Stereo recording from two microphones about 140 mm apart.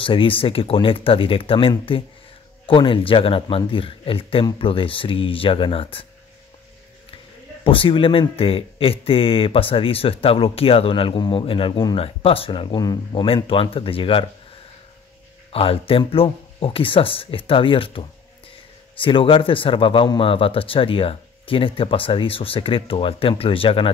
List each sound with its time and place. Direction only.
0.0 s speech: 40° left (ahead or behind)
7.6 s speech: 40° left (ahead or behind)
15.5 s speech: 45° left (ahead or behind)